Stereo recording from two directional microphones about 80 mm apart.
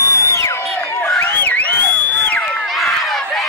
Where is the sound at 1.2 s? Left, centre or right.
Left.